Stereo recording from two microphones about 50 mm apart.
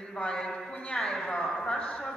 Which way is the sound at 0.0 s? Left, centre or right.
Centre.